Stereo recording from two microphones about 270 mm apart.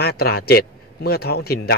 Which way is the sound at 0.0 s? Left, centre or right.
Left.